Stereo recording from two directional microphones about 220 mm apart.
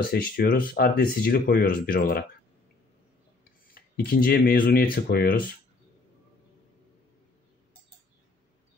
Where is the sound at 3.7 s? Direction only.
40° left (ahead or behind).